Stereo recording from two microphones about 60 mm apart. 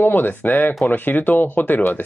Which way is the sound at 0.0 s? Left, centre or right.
Left.